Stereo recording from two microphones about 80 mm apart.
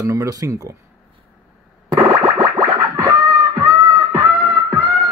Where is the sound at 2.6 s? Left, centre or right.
Right.